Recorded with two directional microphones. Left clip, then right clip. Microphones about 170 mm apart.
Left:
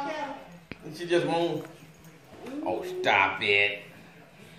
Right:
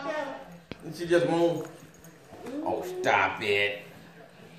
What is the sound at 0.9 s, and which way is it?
Speech, 60° right (ahead or behind).